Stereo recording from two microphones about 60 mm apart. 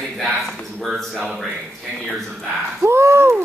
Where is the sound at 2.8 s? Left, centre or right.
Right.